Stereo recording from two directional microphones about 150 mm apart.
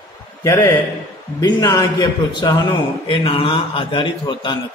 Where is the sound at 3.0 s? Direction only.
35° left (ahead or behind).